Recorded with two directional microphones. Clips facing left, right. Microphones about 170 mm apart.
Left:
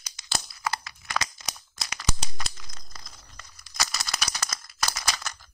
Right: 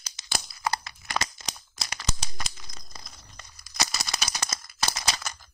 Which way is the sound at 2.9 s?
20° right (ahead or behind).